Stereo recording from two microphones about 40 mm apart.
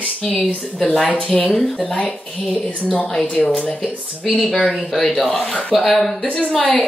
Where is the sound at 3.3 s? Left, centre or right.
Left.